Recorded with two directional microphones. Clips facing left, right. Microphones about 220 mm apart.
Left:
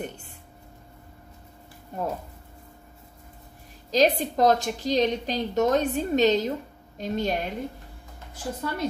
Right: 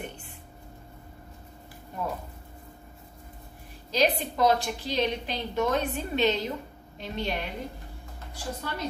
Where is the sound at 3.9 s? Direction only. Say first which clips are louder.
Left 4 dB; 40° left (ahead or behind).